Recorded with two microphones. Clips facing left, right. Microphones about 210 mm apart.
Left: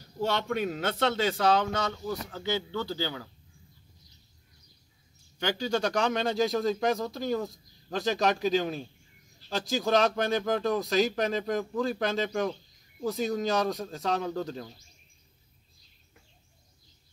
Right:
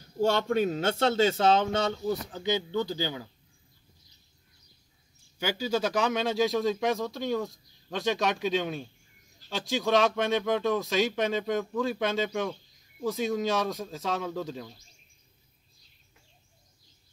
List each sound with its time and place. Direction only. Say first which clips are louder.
0.7 s speech: right 3 dB; 25° right (ahead or behind)
2.3 s speech: right 3 dB; 15° right (ahead or behind)
5.4 s speech: even; 5° right (ahead or behind)